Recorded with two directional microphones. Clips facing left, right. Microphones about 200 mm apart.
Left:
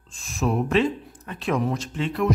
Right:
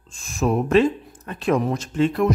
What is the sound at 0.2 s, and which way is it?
Speech, 45° right (ahead or behind).